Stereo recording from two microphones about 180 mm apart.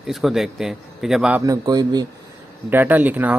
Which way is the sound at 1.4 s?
20° right (ahead or behind).